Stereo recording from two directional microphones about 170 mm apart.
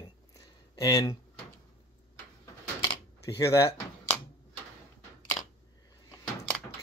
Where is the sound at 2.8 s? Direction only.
15° left (ahead or behind).